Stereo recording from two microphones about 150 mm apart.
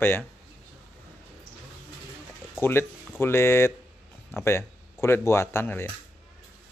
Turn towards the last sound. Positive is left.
turn(degrees=15)  # may be behind; listen again after turning